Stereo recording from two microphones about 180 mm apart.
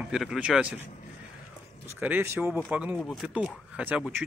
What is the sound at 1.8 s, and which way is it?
A man's voice, 10° right (ahead or behind).